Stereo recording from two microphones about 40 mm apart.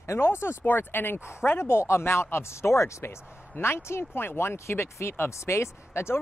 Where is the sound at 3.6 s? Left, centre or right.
Left.